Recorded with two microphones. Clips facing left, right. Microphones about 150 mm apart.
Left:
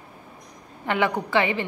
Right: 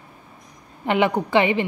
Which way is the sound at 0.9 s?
20° right (ahead or behind).